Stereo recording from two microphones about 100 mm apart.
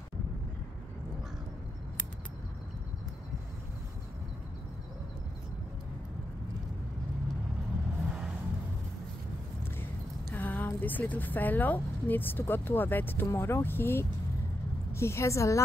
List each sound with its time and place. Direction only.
10.3 s a woman's voice: 15° left (ahead or behind)